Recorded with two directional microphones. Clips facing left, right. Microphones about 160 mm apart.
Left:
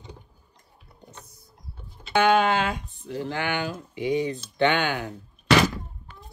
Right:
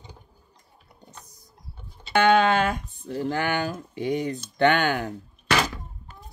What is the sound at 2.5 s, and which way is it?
Speech, 50° right (ahead or behind).